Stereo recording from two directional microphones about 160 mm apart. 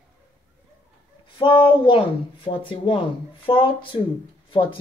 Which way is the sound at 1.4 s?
30° left (ahead or behind).